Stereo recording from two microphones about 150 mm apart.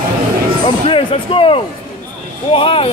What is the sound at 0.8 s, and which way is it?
Speech, 35° left (ahead or behind).